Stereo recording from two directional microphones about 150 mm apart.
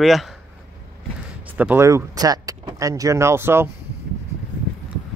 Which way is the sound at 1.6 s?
15° right (ahead or behind).